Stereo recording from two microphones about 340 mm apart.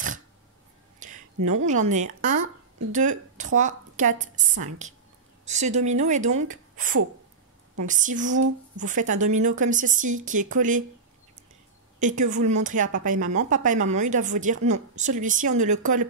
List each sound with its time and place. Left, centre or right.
0.9 s a sound: right
1.7 s a woman's voice: right
12.0 s a woman's voice: right